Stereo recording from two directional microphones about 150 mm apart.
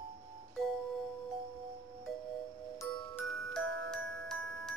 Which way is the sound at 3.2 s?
5° left (ahead or behind).